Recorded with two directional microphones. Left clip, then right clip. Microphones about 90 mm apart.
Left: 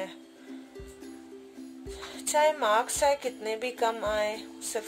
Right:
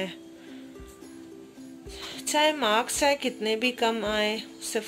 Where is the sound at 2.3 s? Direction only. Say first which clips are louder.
Right 1 dB; 35° left (ahead or behind).